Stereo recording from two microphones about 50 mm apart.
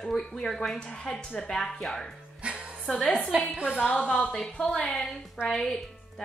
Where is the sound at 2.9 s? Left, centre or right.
Centre.